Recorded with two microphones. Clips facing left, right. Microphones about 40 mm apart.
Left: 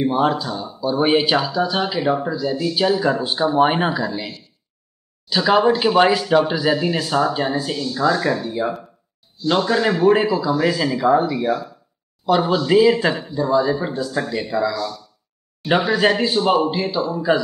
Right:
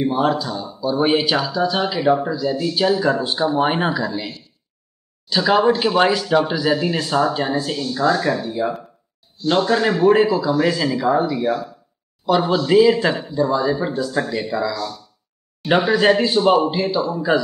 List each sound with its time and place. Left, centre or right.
0.0 s speech: centre
5.3 s speech: centre